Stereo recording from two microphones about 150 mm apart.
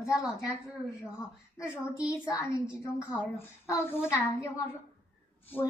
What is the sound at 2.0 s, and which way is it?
A woman's voice, 20° left (ahead or behind).